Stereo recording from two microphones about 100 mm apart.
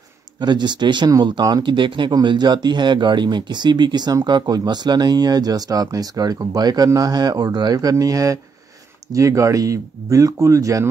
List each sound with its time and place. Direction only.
0.4 s speech: 45° right (ahead or behind)